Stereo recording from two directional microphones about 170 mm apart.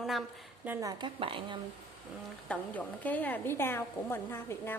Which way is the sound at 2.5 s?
10° left (ahead or behind).